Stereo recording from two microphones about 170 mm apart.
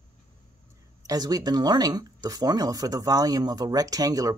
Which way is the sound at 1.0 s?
20° right (ahead or behind).